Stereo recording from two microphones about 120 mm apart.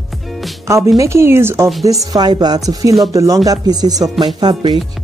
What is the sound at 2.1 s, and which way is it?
Speech, 35° right (ahead or behind).